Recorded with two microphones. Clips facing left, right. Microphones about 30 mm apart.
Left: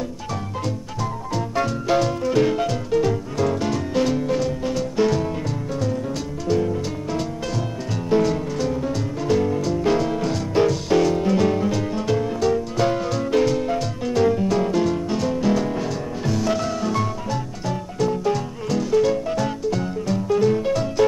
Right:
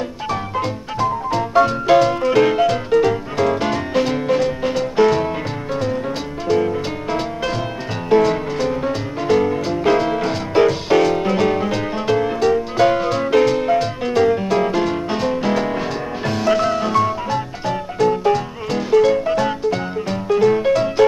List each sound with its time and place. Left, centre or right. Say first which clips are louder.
0.3 s music: right 7 dB; right
6.4 s music: right 4 dB; right